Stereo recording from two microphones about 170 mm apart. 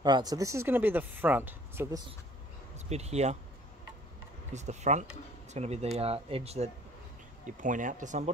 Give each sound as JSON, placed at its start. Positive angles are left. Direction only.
{"t": 0.0, "sound": "speech", "side_deg": -25}
{"t": 2.9, "sound": "speech", "side_deg": -40}
{"t": 4.5, "sound": "speech", "side_deg": -40}
{"t": 7.4, "sound": "speech", "side_deg": -50}